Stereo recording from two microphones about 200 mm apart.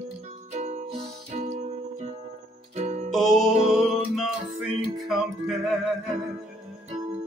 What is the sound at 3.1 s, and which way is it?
Music, centre (ahead or behind).